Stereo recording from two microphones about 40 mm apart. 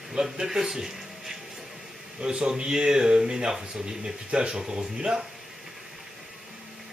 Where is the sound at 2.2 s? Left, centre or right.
Right.